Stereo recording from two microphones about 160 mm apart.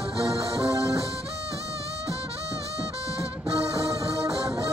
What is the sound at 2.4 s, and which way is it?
Music, 20° right (ahead or behind).